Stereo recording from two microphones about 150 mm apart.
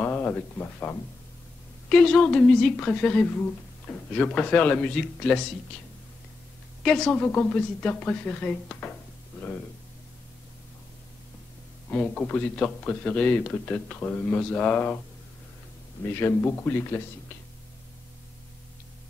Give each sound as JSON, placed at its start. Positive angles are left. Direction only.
{"t": 0.0, "sound": "a woman's voice", "side_deg": 10}
{"t": 6.8, "sound": "a man's voice", "side_deg": 0}
{"t": 11.9, "sound": "a man's voice", "side_deg": 10}
{"t": 16.1, "sound": "a man's voice", "side_deg": 15}